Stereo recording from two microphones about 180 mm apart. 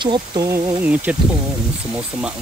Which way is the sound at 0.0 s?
25° right (ahead or behind).